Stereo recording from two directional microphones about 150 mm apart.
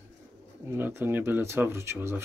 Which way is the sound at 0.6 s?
15° right (ahead or behind).